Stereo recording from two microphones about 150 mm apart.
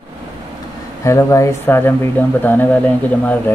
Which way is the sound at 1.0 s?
20° left (ahead or behind).